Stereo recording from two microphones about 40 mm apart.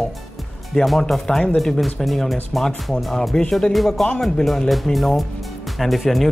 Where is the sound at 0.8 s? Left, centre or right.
Centre.